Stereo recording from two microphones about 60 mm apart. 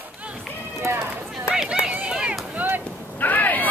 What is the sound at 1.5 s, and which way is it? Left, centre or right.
Run, centre.